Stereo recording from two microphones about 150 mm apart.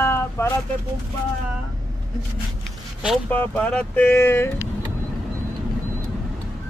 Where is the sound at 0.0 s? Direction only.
15° left (ahead or behind).